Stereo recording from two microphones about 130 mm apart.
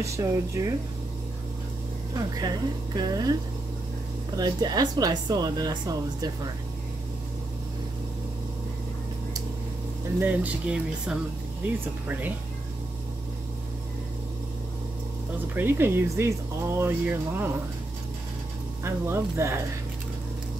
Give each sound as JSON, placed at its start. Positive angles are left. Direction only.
{"t": 0.0, "sound": "speech", "side_deg": -25}
{"t": 2.1, "sound": "speech", "side_deg": -30}
{"t": 4.4, "sound": "speech", "side_deg": -30}
{"t": 10.1, "sound": "speech", "side_deg": -15}
{"t": 15.5, "sound": "speech", "side_deg": -15}
{"t": 18.9, "sound": "speech", "side_deg": -20}